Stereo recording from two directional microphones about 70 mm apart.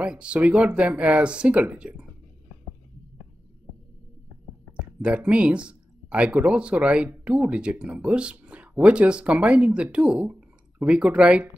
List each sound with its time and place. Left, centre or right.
0.0 s speech: centre
5.0 s speech: centre